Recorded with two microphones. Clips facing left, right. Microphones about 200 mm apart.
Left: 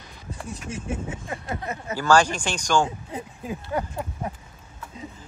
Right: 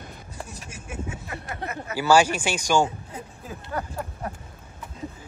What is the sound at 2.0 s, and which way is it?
Speech, 10° right (ahead or behind).